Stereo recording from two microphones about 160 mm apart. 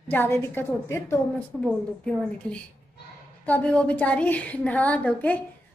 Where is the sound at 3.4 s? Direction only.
10° left (ahead or behind).